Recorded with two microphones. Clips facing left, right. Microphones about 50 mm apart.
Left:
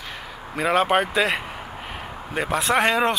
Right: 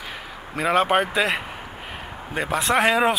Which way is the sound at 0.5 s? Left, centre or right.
Centre.